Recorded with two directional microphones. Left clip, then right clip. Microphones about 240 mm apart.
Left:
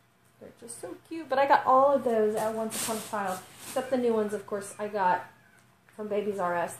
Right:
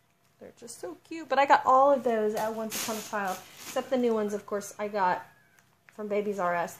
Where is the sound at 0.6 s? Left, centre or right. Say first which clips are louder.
Right 1 dB; right.